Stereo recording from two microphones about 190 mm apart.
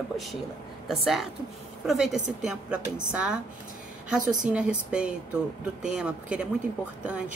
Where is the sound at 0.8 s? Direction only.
Centre (ahead or behind).